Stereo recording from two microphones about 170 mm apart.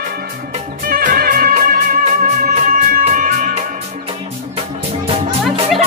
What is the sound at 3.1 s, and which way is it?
Music, 45° right (ahead or behind).